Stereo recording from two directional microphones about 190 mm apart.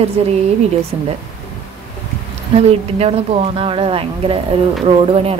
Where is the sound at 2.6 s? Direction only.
30° right (ahead or behind).